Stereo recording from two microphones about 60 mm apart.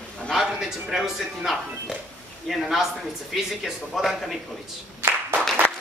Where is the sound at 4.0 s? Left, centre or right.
Centre.